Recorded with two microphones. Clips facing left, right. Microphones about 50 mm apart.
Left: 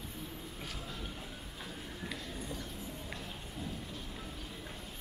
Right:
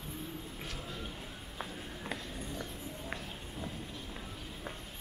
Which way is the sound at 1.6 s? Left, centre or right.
Right.